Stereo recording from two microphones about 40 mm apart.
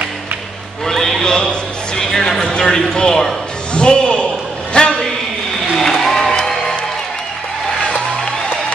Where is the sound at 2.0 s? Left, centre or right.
Centre.